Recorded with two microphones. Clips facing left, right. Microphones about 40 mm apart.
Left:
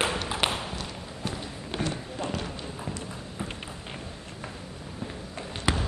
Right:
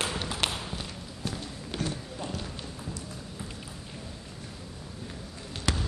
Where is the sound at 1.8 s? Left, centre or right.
Left.